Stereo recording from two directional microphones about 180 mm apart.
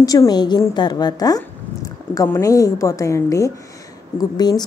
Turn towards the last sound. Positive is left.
turn(degrees=20)  # may be behind; listen again after turning